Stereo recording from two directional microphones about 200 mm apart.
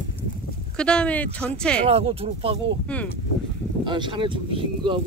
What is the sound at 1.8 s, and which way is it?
Speech, 30° right (ahead or behind).